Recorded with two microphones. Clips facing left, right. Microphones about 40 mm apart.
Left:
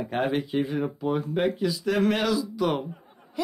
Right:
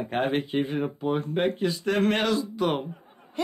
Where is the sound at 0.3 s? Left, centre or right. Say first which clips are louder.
Even; right.